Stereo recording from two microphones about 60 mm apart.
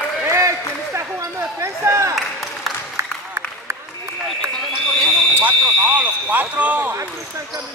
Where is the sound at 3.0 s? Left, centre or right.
Right.